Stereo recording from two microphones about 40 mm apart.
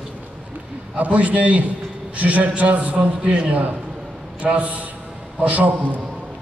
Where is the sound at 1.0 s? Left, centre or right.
Right.